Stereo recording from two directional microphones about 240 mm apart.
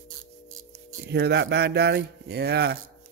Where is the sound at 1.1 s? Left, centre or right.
Right.